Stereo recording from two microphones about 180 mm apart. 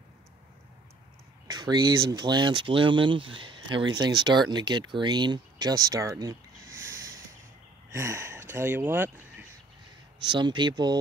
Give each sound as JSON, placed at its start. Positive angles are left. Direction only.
{"t": 1.5, "sound": "speech", "side_deg": -25}
{"t": 10.2, "sound": "speech", "side_deg": -25}